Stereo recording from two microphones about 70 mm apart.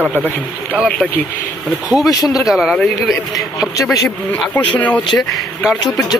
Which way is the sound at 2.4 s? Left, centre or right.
Centre.